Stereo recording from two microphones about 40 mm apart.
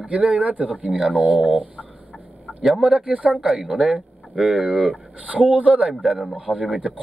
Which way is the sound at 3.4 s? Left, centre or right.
Centre.